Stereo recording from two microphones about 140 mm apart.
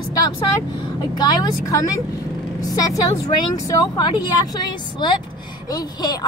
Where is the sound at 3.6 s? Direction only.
25° left (ahead or behind).